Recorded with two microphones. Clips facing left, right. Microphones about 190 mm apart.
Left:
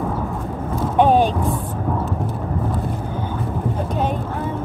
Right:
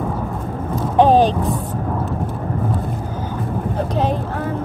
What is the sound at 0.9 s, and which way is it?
Vehicle, 35° right (ahead or behind).